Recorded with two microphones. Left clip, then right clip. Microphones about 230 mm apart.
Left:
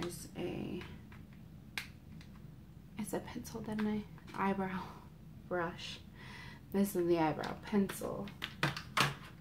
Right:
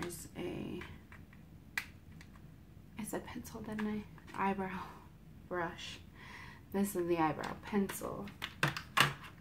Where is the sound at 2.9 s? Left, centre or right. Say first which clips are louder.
Left 1 dB; centre.